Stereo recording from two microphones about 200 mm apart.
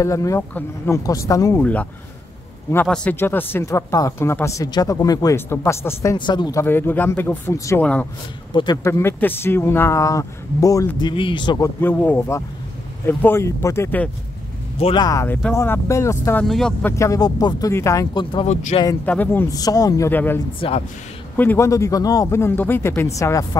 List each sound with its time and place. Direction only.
0.0 s speech: 15° left (ahead or behind)
8.5 s speech: 20° left (ahead or behind)
11.8 s speech: 10° left (ahead or behind)
14.8 s speech: 25° left (ahead or behind)
16.4 s speech: centre (ahead or behind)
16.9 s speech: 15° left (ahead or behind); by 18.8 s 30° left (ahead or behind)
19.0 s speech: 10° left (ahead or behind)
20.6 s speech: 25° left (ahead or behind)
21.4 s speech: 10° left (ahead or behind)